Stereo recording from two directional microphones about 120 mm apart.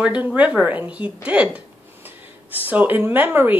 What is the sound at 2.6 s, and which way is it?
Speech, 15° right (ahead or behind).